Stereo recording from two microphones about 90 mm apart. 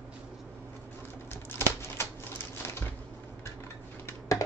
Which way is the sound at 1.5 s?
30° left (ahead or behind).